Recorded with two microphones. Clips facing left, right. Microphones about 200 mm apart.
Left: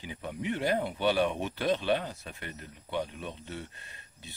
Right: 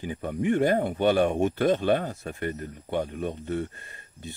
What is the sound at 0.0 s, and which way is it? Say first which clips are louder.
Speech: right 8 dB; 50° right (ahead or behind).